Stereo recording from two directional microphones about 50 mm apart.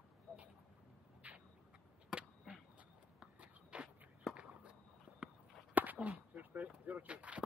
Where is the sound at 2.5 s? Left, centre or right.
Right.